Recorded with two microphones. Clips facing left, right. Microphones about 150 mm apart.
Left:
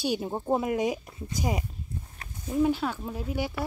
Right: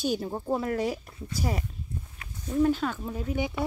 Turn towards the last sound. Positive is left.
turn(degrees=5)  # may be behind; listen again after turning